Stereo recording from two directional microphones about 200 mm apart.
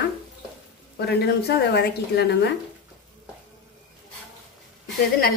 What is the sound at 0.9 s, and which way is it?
A woman's voice, 55° left (ahead or behind).